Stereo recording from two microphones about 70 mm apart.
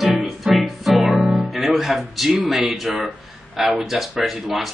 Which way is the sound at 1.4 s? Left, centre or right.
Centre.